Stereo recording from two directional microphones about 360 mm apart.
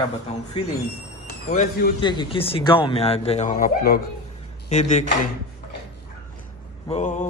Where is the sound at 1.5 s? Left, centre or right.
Left.